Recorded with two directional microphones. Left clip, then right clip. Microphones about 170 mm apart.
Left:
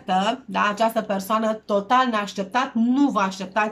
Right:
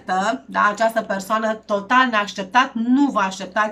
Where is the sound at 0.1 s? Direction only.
15° left (ahead or behind).